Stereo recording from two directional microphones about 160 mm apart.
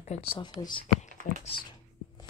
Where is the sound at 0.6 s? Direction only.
25° left (ahead or behind).